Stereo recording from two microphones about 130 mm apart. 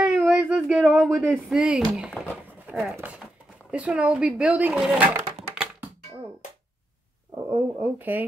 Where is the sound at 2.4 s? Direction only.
15° right (ahead or behind).